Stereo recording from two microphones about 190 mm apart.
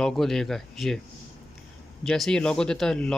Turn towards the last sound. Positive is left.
turn(degrees=5)  # may be behind; listen again after turning